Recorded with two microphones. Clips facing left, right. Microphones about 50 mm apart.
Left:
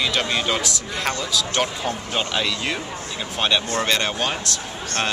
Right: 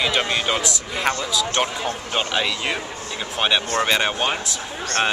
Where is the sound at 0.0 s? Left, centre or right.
Centre.